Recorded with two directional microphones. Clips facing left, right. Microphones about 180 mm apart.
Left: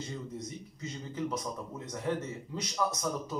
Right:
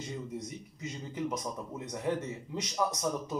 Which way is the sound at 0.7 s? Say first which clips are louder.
Even; 15° right (ahead or behind).